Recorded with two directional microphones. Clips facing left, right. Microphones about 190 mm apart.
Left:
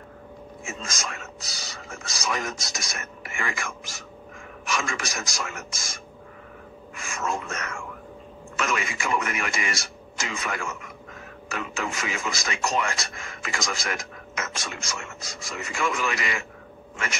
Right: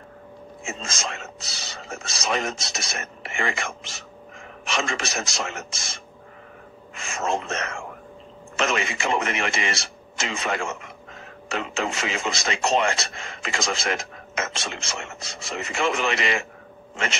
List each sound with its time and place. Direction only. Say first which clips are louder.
0.7 s speech: right 3 dB; 25° right (ahead or behind)